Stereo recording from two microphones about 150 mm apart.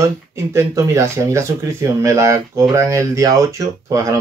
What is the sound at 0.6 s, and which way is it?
Speech, 20° right (ahead or behind).